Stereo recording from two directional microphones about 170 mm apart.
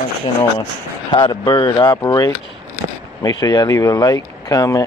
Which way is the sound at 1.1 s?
25° left (ahead or behind).